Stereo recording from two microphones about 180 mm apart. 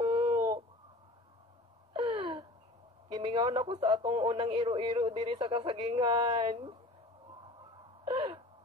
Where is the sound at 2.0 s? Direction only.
30° right (ahead or behind).